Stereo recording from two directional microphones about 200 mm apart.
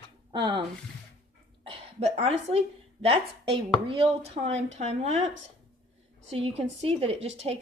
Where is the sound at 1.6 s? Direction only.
30° right (ahead or behind).